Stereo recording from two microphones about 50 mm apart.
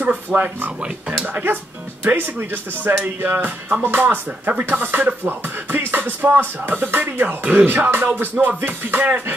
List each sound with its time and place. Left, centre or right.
0.0 s speech: right
2.0 s speech: right
4.6 s music: right